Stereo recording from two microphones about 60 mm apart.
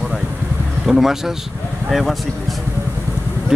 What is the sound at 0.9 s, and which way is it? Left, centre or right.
Speech, centre.